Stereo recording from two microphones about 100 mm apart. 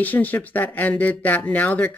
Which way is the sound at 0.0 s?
15° left (ahead or behind).